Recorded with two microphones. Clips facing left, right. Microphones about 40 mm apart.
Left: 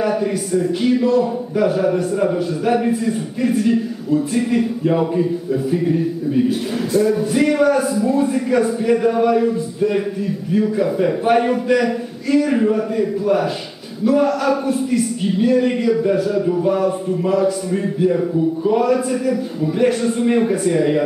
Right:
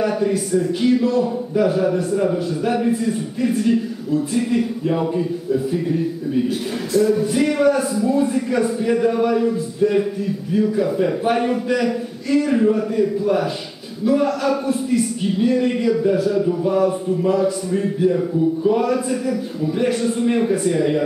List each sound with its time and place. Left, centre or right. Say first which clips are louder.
0.0 s a man's voice: even; centre
7.0 s a man's voice: even; centre